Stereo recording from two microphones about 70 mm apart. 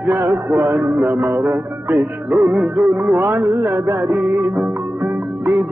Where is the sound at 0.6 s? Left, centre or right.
Right.